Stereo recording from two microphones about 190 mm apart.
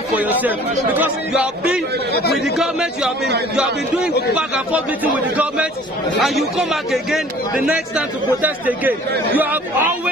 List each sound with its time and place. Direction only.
0.1 s a man's voice: 10° right (ahead or behind)
4.4 s a man's voice: 10° right (ahead or behind)